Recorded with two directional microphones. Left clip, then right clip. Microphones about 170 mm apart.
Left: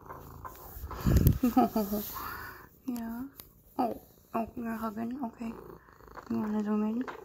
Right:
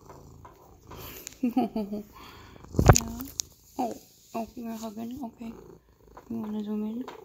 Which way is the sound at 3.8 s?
10° right (ahead or behind).